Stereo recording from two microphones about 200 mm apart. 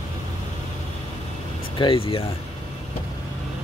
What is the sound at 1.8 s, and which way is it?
Speech, 25° left (ahead or behind).